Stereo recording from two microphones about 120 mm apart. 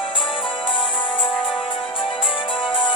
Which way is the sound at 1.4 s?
Centre (ahead or behind).